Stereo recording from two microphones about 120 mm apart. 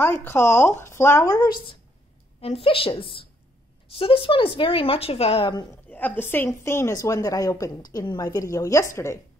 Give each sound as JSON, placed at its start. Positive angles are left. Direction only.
{"t": 0.0, "sound": "a woman's voice", "side_deg": 20}
{"t": 2.4, "sound": "a woman's voice", "side_deg": 50}
{"t": 5.9, "sound": "a woman's voice", "side_deg": 15}